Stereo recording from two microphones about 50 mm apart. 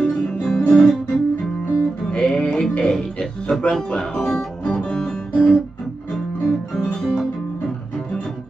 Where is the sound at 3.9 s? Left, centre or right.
Centre.